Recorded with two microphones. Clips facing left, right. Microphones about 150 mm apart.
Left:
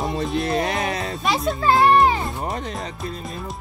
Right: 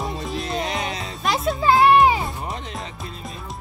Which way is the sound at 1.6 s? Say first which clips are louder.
Right 1 dB; 10° right (ahead or behind).